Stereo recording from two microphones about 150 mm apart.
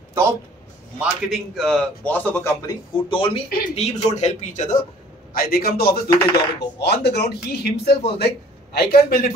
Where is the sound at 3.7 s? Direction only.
50° left (ahead or behind).